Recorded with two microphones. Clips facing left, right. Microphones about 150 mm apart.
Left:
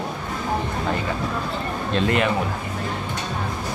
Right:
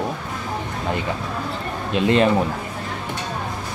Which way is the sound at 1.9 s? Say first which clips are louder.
Right 2 dB; 15° right (ahead or behind).